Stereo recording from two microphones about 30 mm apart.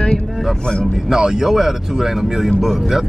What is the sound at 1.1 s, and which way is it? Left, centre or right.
Speech, right.